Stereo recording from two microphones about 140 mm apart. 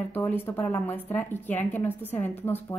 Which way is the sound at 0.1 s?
15° left (ahead or behind).